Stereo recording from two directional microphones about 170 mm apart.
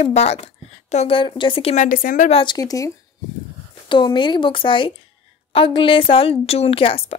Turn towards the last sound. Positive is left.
turn(degrees=35)  # may be behind; listen again after turning